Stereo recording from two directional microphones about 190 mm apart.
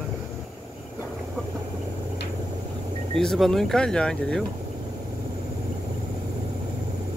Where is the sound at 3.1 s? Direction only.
Centre (ahead or behind).